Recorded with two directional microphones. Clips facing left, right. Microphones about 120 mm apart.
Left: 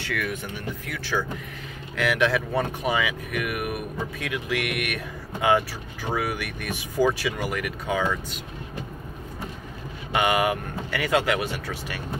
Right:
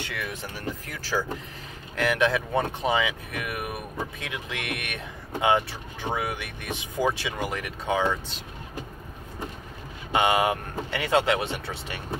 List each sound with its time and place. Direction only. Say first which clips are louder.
0.0 s speech: left 4 dB; 20° right (ahead or behind)
0.8 s speech: left 2 dB; 35° right (ahead or behind)
2.3 s speech: left 1 dB; 25° right (ahead or behind)
10.1 s speech: even; 25° right (ahead or behind)